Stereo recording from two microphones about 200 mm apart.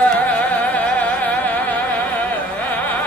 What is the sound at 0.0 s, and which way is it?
Music, 5° left (ahead or behind).